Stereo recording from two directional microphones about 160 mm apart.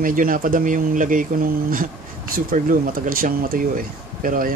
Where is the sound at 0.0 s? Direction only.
60° right (ahead or behind).